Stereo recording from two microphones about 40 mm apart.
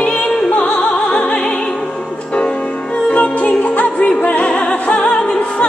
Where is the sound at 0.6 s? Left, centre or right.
Left.